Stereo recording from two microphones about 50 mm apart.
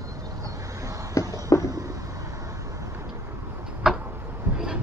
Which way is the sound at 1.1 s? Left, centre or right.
Left.